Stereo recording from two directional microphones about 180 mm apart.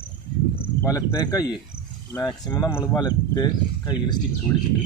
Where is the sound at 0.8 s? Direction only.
20° left (ahead or behind).